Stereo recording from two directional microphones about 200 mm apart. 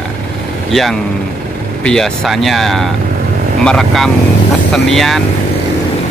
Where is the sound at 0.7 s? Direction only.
Centre (ahead or behind).